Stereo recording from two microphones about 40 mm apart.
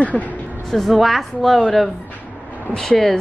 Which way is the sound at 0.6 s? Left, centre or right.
Centre.